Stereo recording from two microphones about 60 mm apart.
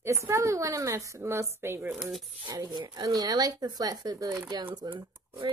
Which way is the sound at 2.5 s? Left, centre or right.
Right.